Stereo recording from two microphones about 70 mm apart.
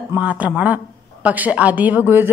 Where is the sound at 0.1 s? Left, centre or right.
Right.